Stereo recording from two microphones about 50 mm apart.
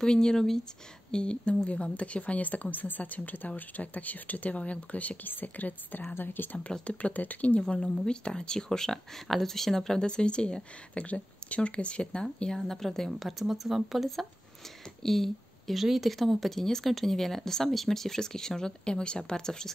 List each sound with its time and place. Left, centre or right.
0.0 s speech: centre; by 7.6 s left
7.8 s speech: centre
12.5 s speech: centre
13.2 s speech: centre